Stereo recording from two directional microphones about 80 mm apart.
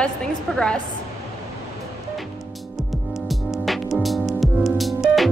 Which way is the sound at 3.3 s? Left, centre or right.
Centre.